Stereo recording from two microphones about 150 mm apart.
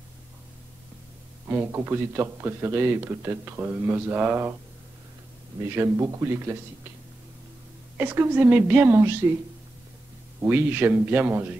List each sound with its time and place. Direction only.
1.5 s a man's voice: 15° right (ahead or behind)
5.7 s speech: 20° right (ahead or behind)
8.0 s a man's voice: 15° right (ahead or behind)
10.4 s a man's voice: 10° right (ahead or behind)